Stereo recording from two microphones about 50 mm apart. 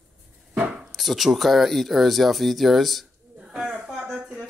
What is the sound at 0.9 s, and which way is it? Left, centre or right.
Speech, centre.